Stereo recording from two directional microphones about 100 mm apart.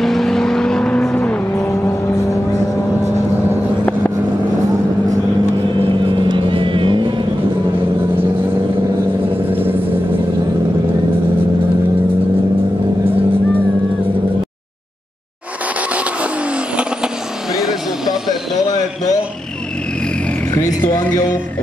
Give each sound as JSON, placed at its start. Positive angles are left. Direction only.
{"t": 0.0, "sound": "vehicle", "side_deg": 5}
{"t": 5.9, "sound": "vehicle", "side_deg": -55}
{"t": 9.5, "sound": "vehicle", "side_deg": -20}
{"t": 17.6, "sound": "a sound", "side_deg": -5}